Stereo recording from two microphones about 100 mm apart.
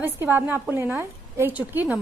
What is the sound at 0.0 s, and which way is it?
A woman's voice, 20° right (ahead or behind).